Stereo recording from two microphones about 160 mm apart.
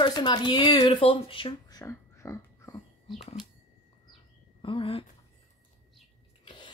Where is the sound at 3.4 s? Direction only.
5° right (ahead or behind).